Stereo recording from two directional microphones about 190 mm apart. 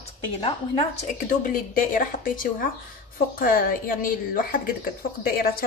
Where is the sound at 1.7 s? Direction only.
45° left (ahead or behind).